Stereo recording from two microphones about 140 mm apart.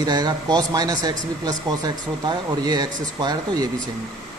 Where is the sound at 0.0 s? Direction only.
30° right (ahead or behind).